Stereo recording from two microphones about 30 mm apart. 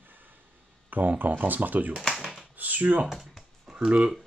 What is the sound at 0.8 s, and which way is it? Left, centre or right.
Speech, right.